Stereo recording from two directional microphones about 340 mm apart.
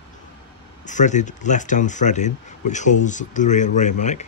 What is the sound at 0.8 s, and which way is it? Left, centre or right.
Speech, left.